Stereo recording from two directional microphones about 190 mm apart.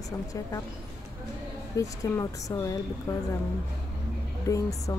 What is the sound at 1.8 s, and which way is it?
A woman's voice, 15° left (ahead or behind).